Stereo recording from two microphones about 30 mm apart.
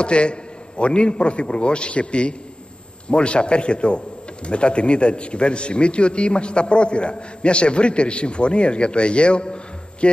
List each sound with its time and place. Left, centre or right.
0.0 s a man's voice: left